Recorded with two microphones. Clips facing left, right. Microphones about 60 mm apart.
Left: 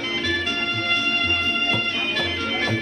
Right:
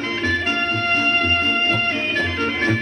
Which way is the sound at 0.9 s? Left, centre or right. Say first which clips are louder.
Right 5 dB; right.